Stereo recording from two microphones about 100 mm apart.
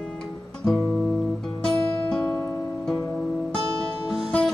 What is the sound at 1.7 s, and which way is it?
Music, 10° left (ahead or behind).